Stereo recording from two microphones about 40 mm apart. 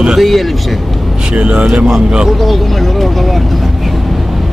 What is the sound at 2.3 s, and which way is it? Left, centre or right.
Speech, centre.